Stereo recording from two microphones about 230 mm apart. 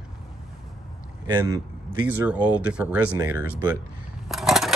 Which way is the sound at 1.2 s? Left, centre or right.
Centre.